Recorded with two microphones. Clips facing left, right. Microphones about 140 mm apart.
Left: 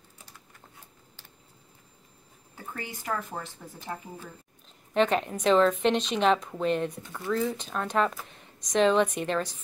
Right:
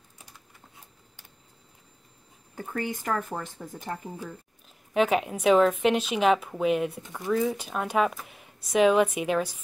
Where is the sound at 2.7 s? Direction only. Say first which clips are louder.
Right 4 dB; 50° right (ahead or behind).